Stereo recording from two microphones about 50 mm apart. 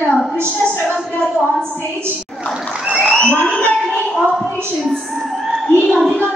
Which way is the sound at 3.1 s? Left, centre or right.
Centre.